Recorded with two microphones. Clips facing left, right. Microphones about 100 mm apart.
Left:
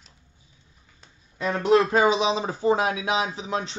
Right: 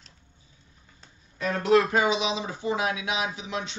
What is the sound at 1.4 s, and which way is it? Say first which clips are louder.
Speech: left 2 dB; 25° left (ahead or behind).